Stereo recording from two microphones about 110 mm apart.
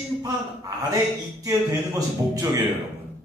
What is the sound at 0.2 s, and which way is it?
A man's voice, 35° right (ahead or behind).